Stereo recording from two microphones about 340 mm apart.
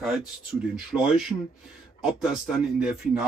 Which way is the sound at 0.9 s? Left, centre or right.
Centre.